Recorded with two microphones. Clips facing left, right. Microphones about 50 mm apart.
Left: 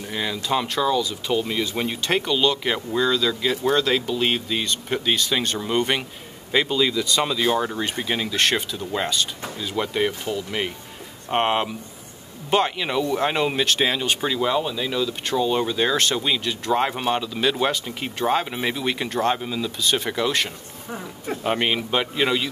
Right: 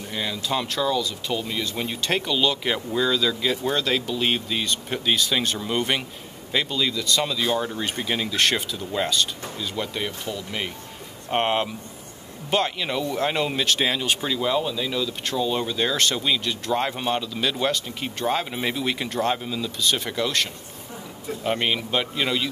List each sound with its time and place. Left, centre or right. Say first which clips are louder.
0.1 s speech: left 3 dB; centre
9.6 s speech: left 6 dB; centre
11.2 s speech: left 1 dB; centre